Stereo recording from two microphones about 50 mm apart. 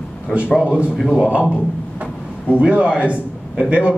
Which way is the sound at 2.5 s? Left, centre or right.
Right.